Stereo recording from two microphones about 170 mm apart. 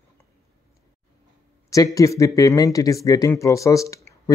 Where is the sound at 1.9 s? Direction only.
20° left (ahead or behind).